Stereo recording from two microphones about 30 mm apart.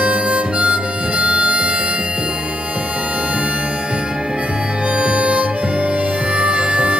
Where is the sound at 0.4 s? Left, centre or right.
Right.